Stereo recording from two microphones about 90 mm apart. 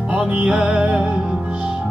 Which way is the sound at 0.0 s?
15° right (ahead or behind).